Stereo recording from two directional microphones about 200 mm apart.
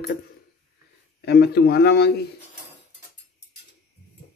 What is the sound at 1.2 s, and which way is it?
Speech, 55° left (ahead or behind).